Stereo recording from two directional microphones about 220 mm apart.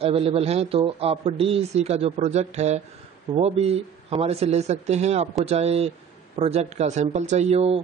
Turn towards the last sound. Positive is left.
turn(degrees=-25)  # may be behind; listen again after turning